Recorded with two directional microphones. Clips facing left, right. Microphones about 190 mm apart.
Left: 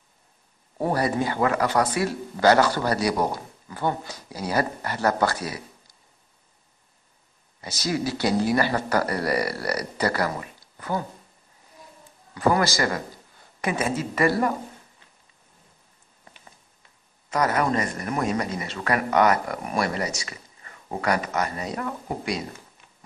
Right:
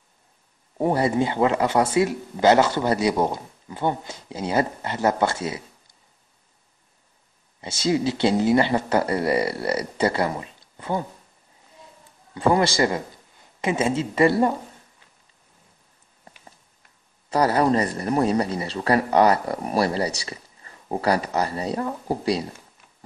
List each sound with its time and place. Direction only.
0.7 s speech: 20° right (ahead or behind)
7.6 s speech: 25° right (ahead or behind)
12.4 s speech: 25° right (ahead or behind)
17.3 s speech: 30° right (ahead or behind)